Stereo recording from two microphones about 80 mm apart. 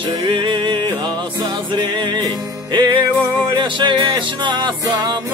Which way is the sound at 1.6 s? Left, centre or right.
Right.